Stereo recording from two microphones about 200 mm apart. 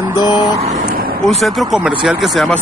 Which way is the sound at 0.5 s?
35° right (ahead or behind).